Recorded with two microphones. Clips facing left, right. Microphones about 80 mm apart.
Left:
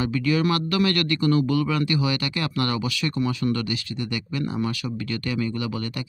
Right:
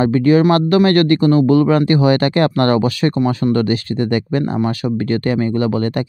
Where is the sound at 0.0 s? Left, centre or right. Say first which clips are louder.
Right 10 dB; right.